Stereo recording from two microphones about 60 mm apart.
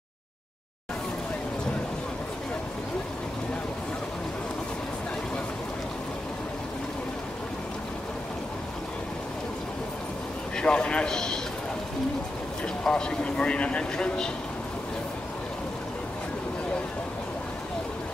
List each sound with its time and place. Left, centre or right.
10.5 s a man's voice: centre
12.8 s speech: centre